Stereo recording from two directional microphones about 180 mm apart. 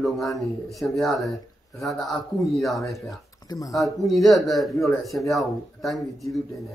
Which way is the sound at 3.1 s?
20° left (ahead or behind).